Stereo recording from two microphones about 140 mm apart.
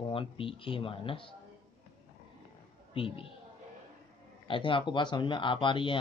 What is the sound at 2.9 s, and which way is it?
Speech, 40° left (ahead or behind).